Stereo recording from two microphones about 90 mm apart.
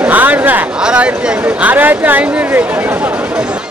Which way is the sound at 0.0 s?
20° right (ahead or behind).